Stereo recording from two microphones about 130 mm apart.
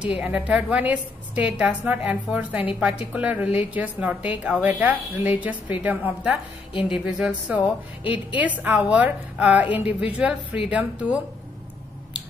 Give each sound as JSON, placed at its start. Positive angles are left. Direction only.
{"t": 0.0, "sound": "a woman's voice", "side_deg": -10}
{"t": 8.0, "sound": "a woman's voice", "side_deg": 40}
{"t": 8.4, "sound": "a woman's voice", "side_deg": -10}